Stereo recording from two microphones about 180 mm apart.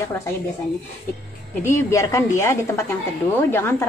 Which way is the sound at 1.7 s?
15° left (ahead or behind).